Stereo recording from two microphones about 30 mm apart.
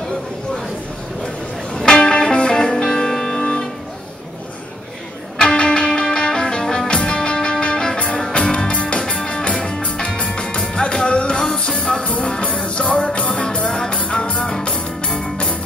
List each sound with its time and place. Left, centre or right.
2.0 s music: left
3.3 s music: left
5.4 s music: left